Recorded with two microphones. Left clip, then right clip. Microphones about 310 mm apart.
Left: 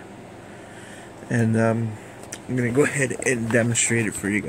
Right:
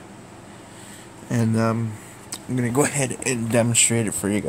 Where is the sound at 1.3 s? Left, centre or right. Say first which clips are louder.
Left 1 dB; centre.